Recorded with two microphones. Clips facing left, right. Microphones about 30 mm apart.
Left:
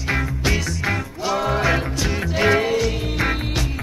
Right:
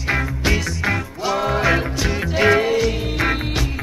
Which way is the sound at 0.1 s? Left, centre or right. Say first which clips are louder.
Right 2 dB; centre.